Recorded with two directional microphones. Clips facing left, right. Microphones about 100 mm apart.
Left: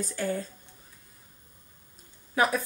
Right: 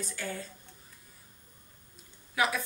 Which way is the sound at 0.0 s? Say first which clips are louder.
Left 7 dB; 40° left (ahead or behind).